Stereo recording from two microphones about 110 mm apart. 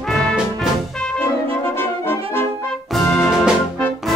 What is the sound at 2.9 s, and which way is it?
Music, 5° left (ahead or behind).